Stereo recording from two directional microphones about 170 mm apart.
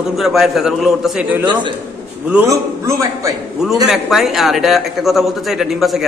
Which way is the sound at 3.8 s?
Centre (ahead or behind).